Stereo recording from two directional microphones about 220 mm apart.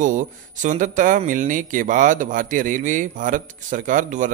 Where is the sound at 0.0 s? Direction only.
35° right (ahead or behind).